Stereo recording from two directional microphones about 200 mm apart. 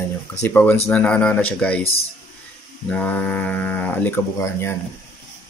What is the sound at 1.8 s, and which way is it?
Speech, 30° left (ahead or behind).